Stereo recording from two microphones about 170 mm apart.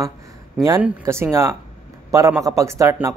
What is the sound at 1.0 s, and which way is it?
A man's voice, 15° right (ahead or behind).